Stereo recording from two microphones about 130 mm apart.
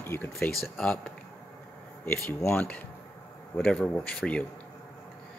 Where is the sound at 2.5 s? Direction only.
10° left (ahead or behind).